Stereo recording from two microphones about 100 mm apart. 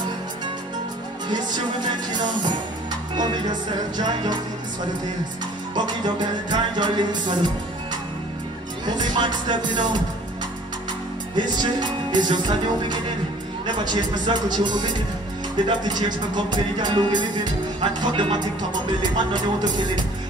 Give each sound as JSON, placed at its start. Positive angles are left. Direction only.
{"t": 3.9, "sound": "music", "side_deg": -45}
{"t": 5.8, "sound": "music", "side_deg": -50}
{"t": 8.8, "sound": "music", "side_deg": -45}
{"t": 11.3, "sound": "music", "side_deg": -50}
{"t": 13.8, "sound": "music", "side_deg": -50}